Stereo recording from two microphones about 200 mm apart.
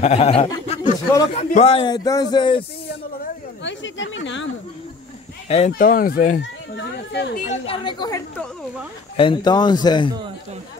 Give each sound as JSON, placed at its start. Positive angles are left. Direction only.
{"t": 0.0, "sound": "speech", "side_deg": 30}
{"t": 3.6, "sound": "speech", "side_deg": 70}
{"t": 5.5, "sound": "speech", "side_deg": 30}
{"t": 5.9, "sound": "speech", "side_deg": 45}
{"t": 7.1, "sound": "speech", "side_deg": 60}
{"t": 7.4, "sound": "speech", "side_deg": 30}